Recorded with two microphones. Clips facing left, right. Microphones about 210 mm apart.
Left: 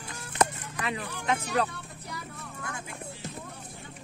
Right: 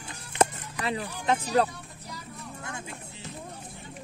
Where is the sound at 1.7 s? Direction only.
60° left (ahead or behind).